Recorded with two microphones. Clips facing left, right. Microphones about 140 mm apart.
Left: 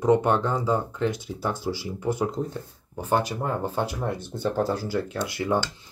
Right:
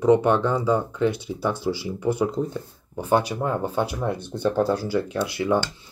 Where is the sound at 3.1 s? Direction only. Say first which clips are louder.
Right 3 dB; 10° right (ahead or behind).